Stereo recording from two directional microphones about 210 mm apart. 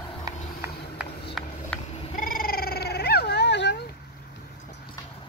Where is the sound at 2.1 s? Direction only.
40° left (ahead or behind).